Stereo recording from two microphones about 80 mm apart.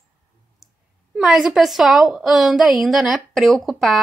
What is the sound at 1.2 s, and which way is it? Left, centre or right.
A woman's voice, centre.